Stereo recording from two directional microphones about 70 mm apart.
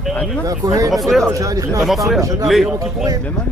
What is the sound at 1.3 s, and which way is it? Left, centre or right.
A man's voice, right.